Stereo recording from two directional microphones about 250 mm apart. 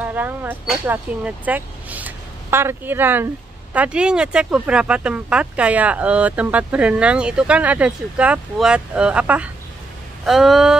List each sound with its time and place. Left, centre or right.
0.0 s speech: centre